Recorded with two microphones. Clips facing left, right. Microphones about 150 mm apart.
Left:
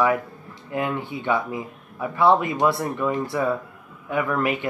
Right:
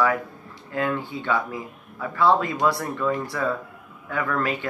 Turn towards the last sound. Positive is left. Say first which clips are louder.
# left 2 dB
turn(degrees=20)  # may be behind; listen again after turning